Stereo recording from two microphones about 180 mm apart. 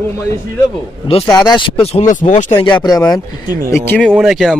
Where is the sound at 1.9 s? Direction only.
40° left (ahead or behind).